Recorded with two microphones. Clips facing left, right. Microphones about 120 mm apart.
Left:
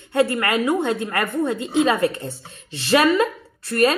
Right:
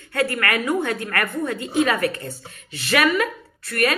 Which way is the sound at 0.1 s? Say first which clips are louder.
Left 3 dB; 20° left (ahead or behind).